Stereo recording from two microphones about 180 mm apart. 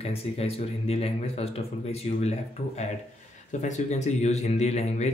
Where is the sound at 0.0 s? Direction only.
35° left (ahead or behind).